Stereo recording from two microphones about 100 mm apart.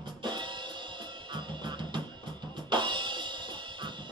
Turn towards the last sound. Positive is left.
turn(degrees=-50)  # may be behind; listen again after turning